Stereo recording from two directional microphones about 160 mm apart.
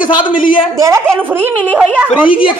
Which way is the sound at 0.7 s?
20° right (ahead or behind).